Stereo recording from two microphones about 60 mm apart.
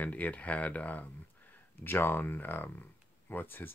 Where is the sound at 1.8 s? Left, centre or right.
Left.